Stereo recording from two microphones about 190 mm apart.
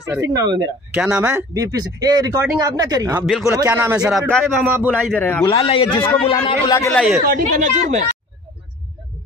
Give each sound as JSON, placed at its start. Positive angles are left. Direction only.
{"t": 0.1, "sound": "speech", "side_deg": -15}
{"t": 0.9, "sound": "speech", "side_deg": -10}
{"t": 3.3, "sound": "a man's voice", "side_deg": 0}
{"t": 3.6, "sound": "speech", "side_deg": -10}
{"t": 4.9, "sound": "a man's voice", "side_deg": 5}
{"t": 5.4, "sound": "a man's voice", "side_deg": 30}
{"t": 6.9, "sound": "a man's voice", "side_deg": 0}
{"t": 7.2, "sound": "speech", "side_deg": -45}